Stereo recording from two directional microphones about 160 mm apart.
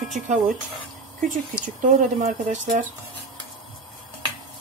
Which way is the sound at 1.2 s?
55° right (ahead or behind).